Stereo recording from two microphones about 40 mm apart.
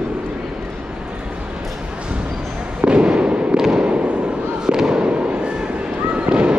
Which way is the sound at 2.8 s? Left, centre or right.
Right.